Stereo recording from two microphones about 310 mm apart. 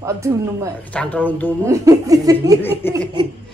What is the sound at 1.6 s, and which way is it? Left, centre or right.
Speech, centre.